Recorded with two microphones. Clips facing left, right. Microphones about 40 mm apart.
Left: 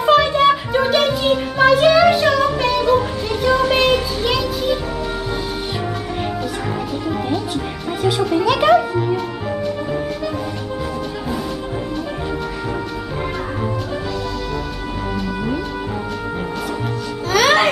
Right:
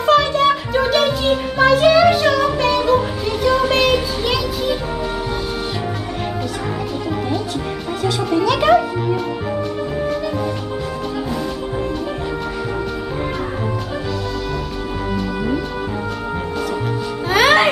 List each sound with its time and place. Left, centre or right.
0.0 s music: centre
7.1 s music: centre
15.1 s music: centre
17.3 s music: right